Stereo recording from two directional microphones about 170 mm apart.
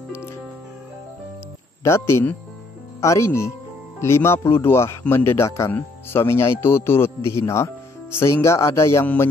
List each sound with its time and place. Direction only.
1.8 s speech: 15° left (ahead or behind)